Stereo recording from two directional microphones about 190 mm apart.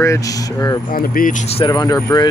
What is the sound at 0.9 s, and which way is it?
Speech, 50° left (ahead or behind).